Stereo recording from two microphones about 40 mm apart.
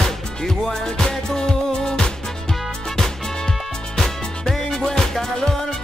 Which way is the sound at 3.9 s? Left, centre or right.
Centre.